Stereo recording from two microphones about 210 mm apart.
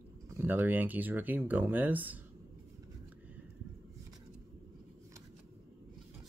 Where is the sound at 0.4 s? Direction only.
10° right (ahead or behind).